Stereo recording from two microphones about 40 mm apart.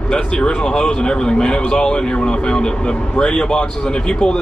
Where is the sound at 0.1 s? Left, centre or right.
Left.